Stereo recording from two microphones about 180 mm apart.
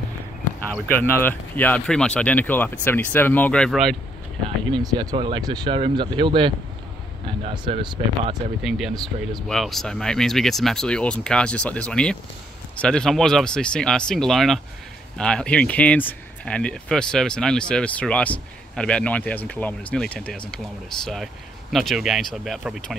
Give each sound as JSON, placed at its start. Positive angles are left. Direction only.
{"t": 0.7, "sound": "speech", "side_deg": 10}
{"t": 4.8, "sound": "speech", "side_deg": -25}
{"t": 8.6, "sound": "speech", "side_deg": 0}